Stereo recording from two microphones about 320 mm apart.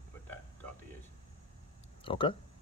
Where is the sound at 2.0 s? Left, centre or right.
Centre.